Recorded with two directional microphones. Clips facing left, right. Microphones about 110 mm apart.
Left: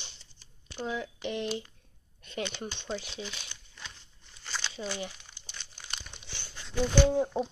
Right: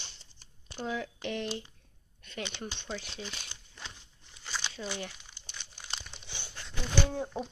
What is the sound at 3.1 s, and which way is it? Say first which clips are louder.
Speech: left 2 dB; 35° right (ahead or behind).